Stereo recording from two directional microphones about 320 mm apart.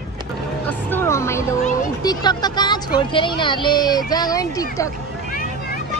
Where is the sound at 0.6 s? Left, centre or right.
Centre.